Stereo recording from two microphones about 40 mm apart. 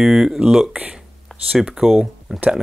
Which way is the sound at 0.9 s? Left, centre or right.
Centre.